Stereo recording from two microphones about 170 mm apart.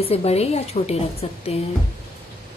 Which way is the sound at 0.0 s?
35° left (ahead or behind).